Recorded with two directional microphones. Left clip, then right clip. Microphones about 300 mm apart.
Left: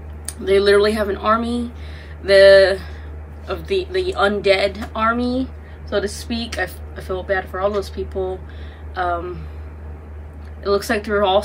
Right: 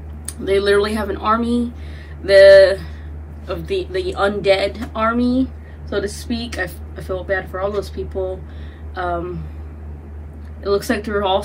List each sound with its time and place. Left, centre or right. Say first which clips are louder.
0.3 s a woman's voice: left 2 dB; centre
10.6 s a woman's voice: even; centre